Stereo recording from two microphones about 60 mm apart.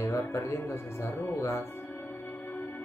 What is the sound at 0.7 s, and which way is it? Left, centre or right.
Speech, left.